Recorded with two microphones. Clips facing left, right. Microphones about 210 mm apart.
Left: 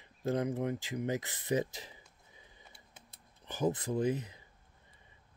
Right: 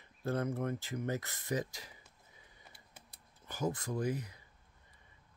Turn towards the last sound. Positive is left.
turn(degrees=20)  # may be behind; listen again after turning